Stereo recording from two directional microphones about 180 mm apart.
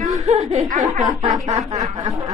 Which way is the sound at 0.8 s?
20° right (ahead or behind).